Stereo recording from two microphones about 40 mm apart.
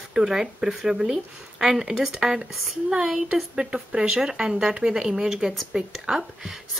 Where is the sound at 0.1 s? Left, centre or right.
Centre.